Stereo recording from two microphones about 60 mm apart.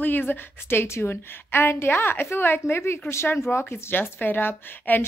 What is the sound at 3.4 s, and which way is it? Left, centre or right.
A woman's voice, left.